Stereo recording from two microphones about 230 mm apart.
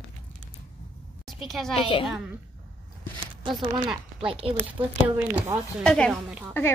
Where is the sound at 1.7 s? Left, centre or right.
Left.